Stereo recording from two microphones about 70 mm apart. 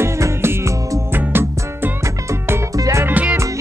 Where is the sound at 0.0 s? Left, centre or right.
Right.